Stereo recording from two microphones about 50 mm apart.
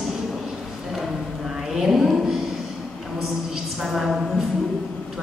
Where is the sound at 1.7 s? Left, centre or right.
Centre.